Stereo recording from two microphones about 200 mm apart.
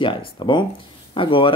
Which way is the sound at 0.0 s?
25° left (ahead or behind).